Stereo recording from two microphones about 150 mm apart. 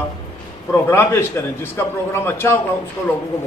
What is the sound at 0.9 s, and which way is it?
A man's voice, 15° left (ahead or behind).